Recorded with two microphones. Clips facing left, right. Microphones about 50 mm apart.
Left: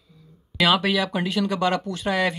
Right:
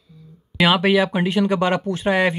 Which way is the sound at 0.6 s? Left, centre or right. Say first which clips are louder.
Right 4 dB; right.